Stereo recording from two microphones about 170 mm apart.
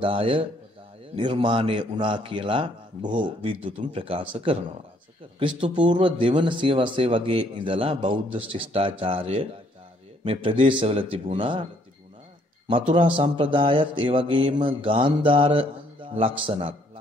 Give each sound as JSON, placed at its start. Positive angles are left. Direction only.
{"t": 0.0, "sound": "speech", "side_deg": -30}
{"t": 12.6, "sound": "speech", "side_deg": -30}